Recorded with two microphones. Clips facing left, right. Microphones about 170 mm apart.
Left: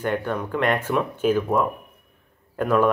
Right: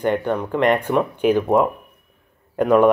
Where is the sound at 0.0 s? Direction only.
15° right (ahead or behind).